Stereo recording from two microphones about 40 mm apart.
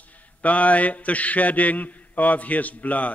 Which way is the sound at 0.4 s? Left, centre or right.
Left.